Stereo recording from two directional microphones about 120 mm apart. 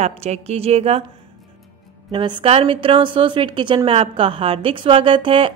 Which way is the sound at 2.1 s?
40° right (ahead or behind).